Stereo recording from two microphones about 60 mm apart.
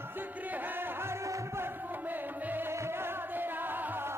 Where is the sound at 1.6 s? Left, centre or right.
Right.